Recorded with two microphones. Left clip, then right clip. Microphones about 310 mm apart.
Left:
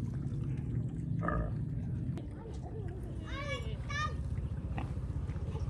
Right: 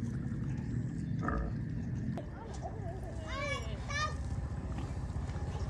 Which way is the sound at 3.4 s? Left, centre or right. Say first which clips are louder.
Right 3 dB; right.